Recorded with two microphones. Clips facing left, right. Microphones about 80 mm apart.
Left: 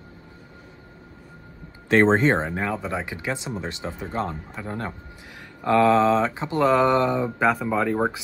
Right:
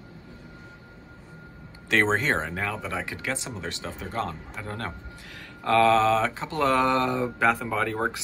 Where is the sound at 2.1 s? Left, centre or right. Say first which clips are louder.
Left 5 dB; left.